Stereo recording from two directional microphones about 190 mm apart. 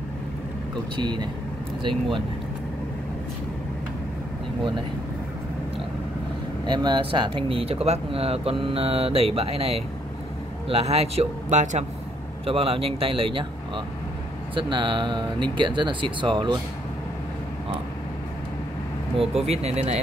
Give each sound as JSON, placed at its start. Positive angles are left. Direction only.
{"t": 0.9, "sound": "speech", "side_deg": -25}
{"t": 6.6, "sound": "speech", "side_deg": -25}
{"t": 19.1, "sound": "speech", "side_deg": -35}